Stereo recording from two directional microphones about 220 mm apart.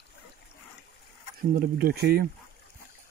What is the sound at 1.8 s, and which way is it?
Speech, 45° right (ahead or behind).